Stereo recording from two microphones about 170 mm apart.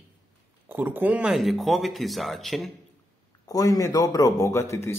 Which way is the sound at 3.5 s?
20° left (ahead or behind).